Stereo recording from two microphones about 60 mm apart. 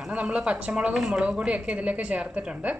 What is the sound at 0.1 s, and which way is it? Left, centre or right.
A woman's voice, centre.